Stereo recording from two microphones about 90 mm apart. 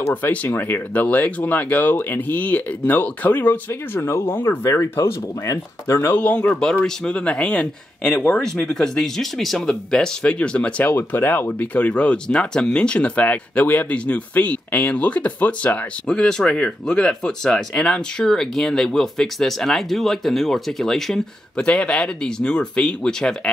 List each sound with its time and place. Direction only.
0.1 s speech: 20° left (ahead or behind)